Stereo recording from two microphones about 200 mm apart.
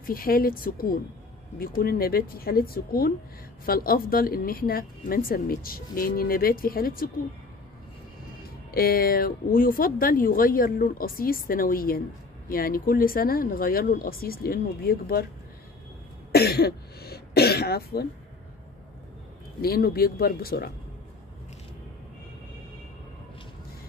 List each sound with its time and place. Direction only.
0.0 s speech: 45° left (ahead or behind)
8.7 s speech: 50° left (ahead or behind)
16.3 s speech: 50° left (ahead or behind)
19.6 s speech: 50° left (ahead or behind)